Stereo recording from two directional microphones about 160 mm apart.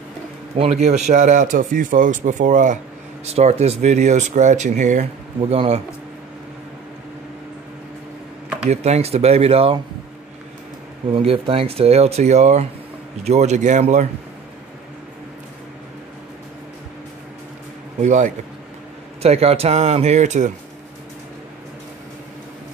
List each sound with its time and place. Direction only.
0.6 s a man's voice: 40° right (ahead or behind)
5.5 s speech: 40° right (ahead or behind)
8.6 s speech: 40° right (ahead or behind)
11.1 s a man's voice: 35° right (ahead or behind); by 14.0 s 50° right (ahead or behind)
18.0 s a man's voice: 50° right (ahead or behind)